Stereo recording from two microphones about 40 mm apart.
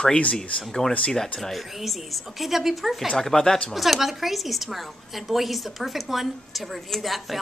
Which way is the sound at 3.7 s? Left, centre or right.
Centre.